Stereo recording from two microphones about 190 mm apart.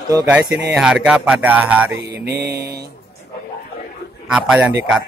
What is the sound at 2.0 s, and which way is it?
Mantra, 60° right (ahead or behind).